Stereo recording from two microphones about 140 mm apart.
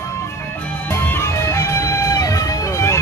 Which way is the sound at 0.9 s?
15° left (ahead or behind).